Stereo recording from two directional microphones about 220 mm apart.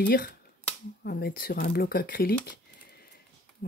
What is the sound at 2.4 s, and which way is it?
Crumpling, 45° left (ahead or behind).